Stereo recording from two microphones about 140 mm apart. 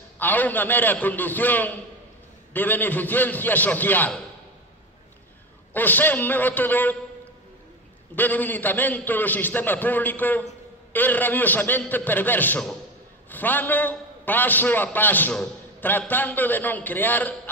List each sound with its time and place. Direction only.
0.2 s a man's voice: 10° left (ahead or behind)
5.7 s a man's voice: 15° left (ahead or behind)
8.2 s a man's voice: 10° left (ahead or behind)